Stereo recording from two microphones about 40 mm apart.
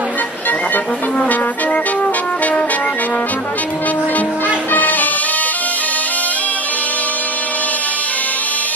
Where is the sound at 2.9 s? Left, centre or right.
Left.